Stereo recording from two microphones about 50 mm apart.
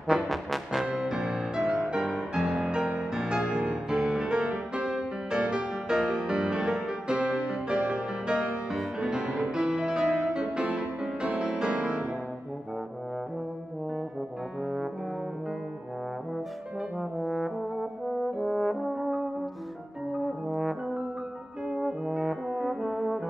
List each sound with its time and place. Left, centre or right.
0.1 s brass instrument: centre
0.9 s music: centre
2.7 s music: centre
14.6 s brass instrument: centre
17.2 s brass instrument: centre
21.8 s brass instrument: centre